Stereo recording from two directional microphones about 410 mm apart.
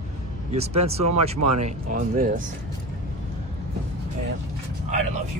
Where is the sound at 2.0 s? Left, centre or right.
Centre.